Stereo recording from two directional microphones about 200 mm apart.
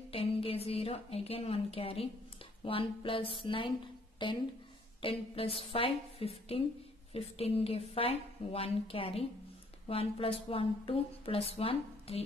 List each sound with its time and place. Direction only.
0.1 s a woman's voice: 30° left (ahead or behind)